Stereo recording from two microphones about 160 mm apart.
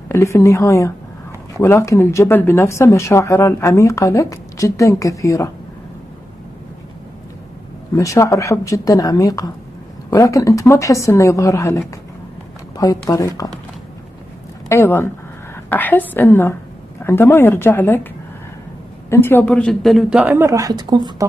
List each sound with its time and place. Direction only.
0.1 s speech: 20° left (ahead or behind)
7.9 s speech: 20° left (ahead or behind)
13.1 s speech: 20° left (ahead or behind)
14.7 s speech: 15° left (ahead or behind)
19.0 s a man's voice: 15° left (ahead or behind); by 20.3 s 5° right (ahead or behind)
20.3 s speech: 20° right (ahead or behind)